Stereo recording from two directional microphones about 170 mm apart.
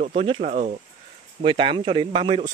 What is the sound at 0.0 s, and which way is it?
Speech, 35° right (ahead or behind).